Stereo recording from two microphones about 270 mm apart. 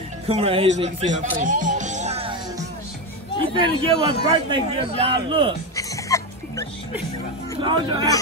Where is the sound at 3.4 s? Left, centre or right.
Centre.